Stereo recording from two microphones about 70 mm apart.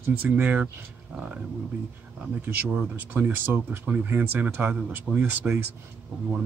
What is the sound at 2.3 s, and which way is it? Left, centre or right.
Speech, right.